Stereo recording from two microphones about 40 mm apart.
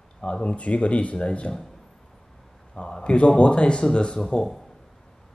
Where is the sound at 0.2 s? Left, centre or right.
Left.